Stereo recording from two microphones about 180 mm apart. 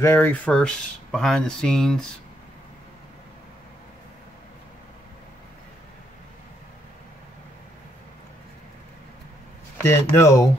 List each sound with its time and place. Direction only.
0.0 s speech: 10° left (ahead or behind)
9.8 s speech: 15° left (ahead or behind)